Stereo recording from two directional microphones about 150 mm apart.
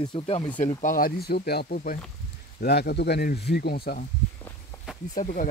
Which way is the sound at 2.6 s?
90° left.